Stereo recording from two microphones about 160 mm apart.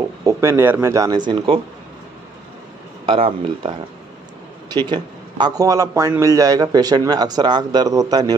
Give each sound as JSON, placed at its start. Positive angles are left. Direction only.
{"t": 0.2, "sound": "a man's voice", "side_deg": -20}
{"t": 3.1, "sound": "speech", "side_deg": -35}
{"t": 4.8, "sound": "a man's voice", "side_deg": -25}